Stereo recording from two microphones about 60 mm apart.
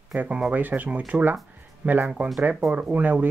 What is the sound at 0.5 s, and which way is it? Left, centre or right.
Speech, right.